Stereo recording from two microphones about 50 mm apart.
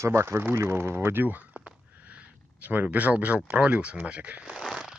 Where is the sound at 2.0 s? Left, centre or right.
Right.